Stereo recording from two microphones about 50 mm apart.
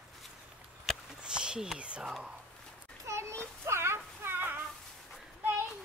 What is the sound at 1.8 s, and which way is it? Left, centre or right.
Speech, right.